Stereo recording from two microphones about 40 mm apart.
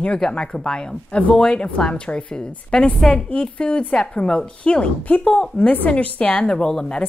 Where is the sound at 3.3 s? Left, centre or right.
Left.